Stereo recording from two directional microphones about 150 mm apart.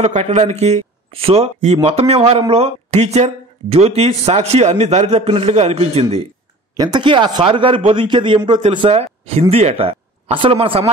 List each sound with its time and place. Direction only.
0.0 s speech: 50° right (ahead or behind)
6.8 s a man's voice: 30° right (ahead or behind)